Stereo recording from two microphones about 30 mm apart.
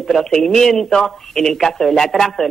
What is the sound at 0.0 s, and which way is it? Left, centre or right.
Speech, centre.